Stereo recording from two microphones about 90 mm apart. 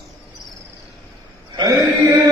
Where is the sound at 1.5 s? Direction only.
50° right (ahead or behind).